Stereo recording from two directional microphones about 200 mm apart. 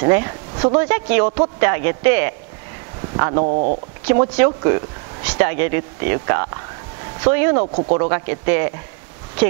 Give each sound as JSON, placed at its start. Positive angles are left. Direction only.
{"t": 0.0, "sound": "speech", "side_deg": -20}
{"t": 3.4, "sound": "speech", "side_deg": -40}
{"t": 4.0, "sound": "speech", "side_deg": -10}
{"t": 7.6, "sound": "speech", "side_deg": -40}
{"t": 8.0, "sound": "speech", "side_deg": -15}